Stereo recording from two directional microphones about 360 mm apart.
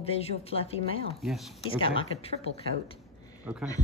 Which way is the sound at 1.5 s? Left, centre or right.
Centre.